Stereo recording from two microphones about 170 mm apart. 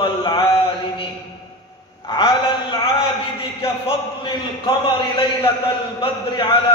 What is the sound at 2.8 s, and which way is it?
A man's voice, 30° left (ahead or behind).